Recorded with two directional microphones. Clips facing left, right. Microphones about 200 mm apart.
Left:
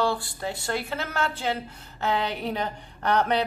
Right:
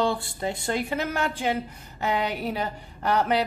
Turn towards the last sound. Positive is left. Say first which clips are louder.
# even
turn(degrees=-5)  # may be behind; listen again after turning